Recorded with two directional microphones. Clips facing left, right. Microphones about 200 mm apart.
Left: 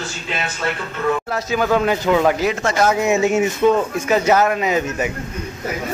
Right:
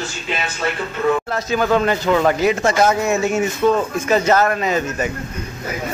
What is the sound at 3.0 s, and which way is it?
Speech, 20° left (ahead or behind).